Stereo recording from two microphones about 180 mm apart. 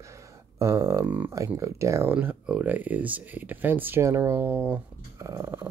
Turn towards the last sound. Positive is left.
turn(degrees=-15)  # may be behind; listen again after turning